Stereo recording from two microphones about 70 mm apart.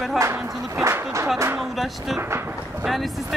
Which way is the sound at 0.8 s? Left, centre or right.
Right.